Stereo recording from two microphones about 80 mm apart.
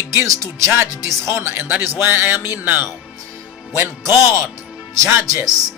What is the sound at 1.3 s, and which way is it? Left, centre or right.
Speech, right.